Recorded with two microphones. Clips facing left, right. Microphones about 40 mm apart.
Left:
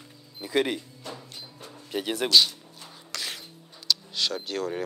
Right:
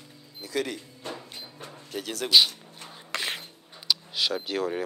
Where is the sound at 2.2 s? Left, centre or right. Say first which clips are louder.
Right 1 dB; centre.